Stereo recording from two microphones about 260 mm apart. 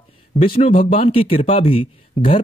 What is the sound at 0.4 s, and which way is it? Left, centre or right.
Speech, left.